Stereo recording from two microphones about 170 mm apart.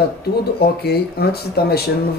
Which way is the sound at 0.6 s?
70° left (ahead or behind).